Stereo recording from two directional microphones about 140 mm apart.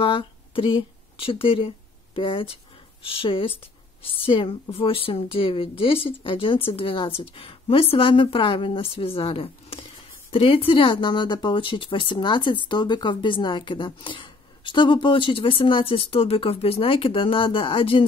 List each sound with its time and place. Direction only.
0.0 s speech: 40° left (ahead or behind)